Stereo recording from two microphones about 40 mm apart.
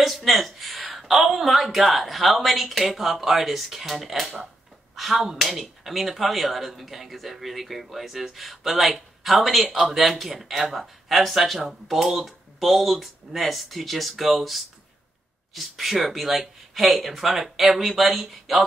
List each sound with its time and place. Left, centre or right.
0.0 s speech: centre